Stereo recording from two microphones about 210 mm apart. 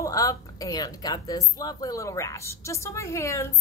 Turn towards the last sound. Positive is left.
turn(degrees=15)  # may be behind; listen again after turning